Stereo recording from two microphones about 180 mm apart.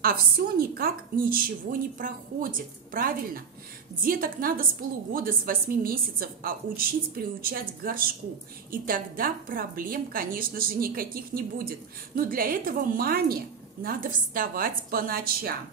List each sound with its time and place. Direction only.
0.0 s a woman's voice: 55° right (ahead or behind)